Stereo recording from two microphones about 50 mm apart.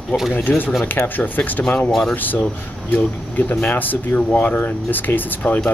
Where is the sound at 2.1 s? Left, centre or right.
Left.